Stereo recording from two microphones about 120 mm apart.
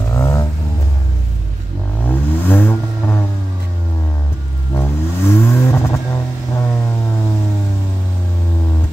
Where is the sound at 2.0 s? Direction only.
15° left (ahead or behind).